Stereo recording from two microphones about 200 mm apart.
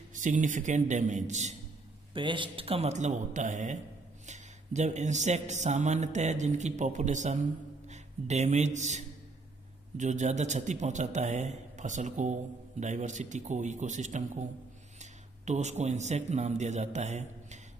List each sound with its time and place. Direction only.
0.1 s speech: 40° right (ahead or behind)
2.1 s a man's voice: 25° right (ahead or behind)